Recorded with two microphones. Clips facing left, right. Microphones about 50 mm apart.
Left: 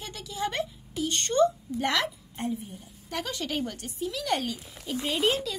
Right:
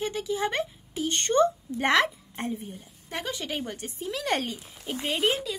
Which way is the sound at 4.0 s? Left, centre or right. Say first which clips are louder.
Even; right.